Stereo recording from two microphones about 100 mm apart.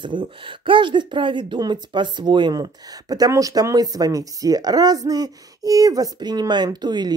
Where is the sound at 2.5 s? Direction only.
40° right (ahead or behind).